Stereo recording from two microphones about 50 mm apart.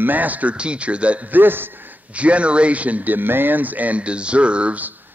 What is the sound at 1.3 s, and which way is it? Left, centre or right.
Speech, right.